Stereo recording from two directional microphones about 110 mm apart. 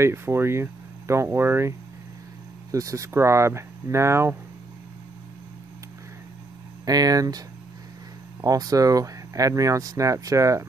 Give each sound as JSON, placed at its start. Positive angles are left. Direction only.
{"t": 0.0, "sound": "speech", "side_deg": -25}
{"t": 6.9, "sound": "speech", "side_deg": -35}